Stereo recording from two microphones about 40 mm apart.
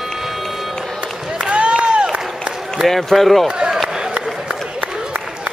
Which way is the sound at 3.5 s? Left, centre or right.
Right.